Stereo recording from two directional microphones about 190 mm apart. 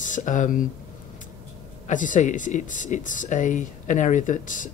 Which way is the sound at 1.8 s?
40° left (ahead or behind).